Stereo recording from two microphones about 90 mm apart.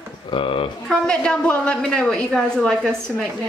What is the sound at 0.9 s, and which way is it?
A woman's voice, 10° left (ahead or behind).